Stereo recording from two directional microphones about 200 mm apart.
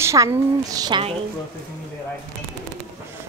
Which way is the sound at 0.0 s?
15° right (ahead or behind).